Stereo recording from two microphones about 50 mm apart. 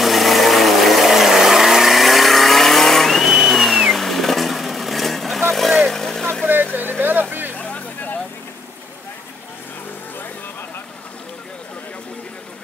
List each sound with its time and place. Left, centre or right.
0.0 s vehicle: centre
3.3 s vehicle: centre
6.4 s vehicle: right
7.5 s vehicle: left